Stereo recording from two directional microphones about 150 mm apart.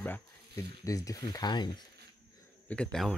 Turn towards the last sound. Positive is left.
turn(degrees=5)  # may be behind; listen again after turning